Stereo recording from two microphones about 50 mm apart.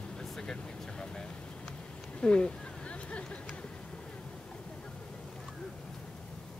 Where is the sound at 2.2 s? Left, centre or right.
Left.